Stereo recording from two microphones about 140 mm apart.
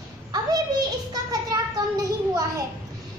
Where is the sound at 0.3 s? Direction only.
30° right (ahead or behind).